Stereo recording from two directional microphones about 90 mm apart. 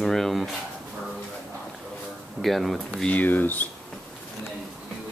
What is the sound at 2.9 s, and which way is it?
Speech, 10° left (ahead or behind).